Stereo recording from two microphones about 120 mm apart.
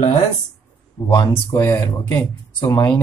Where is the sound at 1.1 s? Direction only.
40° left (ahead or behind).